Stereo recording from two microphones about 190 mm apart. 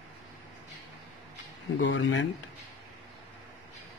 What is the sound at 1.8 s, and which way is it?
Speech, 75° left (ahead or behind).